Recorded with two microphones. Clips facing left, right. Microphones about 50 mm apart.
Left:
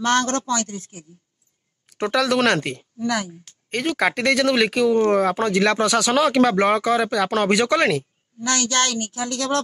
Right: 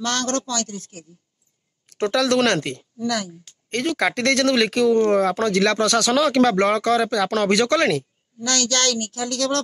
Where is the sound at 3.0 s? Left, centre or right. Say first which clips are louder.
Left 1 dB; centre.